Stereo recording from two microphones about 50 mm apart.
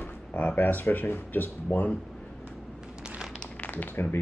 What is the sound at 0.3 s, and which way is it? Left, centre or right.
Speech, left.